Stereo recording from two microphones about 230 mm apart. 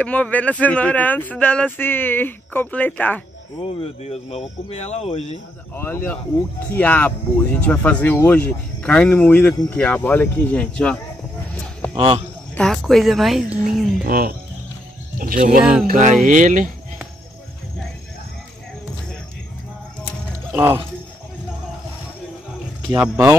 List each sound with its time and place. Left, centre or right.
0.0 s speech: centre
3.6 s speech: left
5.8 s speech: centre
12.5 s a woman's voice: centre
14.0 s speech: right
15.6 s a woman's voice: centre
15.9 s speech: right
20.5 s speech: centre
22.9 s speech: centre